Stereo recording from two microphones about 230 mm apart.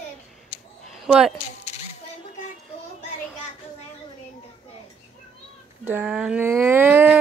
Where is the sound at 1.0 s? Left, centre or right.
Centre.